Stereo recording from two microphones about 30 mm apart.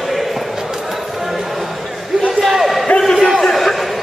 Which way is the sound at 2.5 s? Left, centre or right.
Centre.